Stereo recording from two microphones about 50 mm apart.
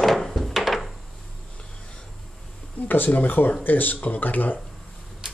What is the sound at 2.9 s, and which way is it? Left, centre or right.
Speech, left.